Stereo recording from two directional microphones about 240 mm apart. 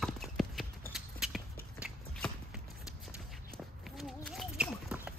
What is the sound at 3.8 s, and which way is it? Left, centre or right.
Horse, centre.